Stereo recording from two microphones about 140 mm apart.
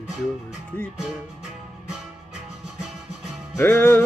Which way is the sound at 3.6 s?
15° left (ahead or behind).